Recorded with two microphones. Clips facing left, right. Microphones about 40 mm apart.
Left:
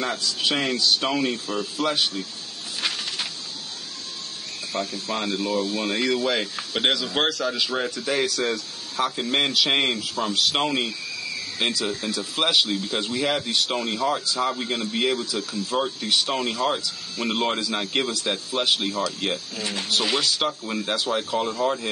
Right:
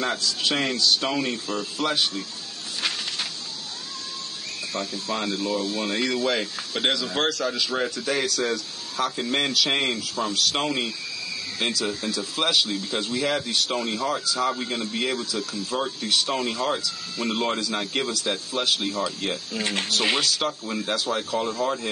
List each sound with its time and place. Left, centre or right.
0.0 s a man's voice: centre
4.9 s a man's voice: centre
19.6 s speech: right
20.2 s a man's voice: centre